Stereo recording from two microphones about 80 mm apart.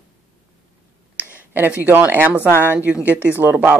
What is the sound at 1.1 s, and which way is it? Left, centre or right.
Speech, right.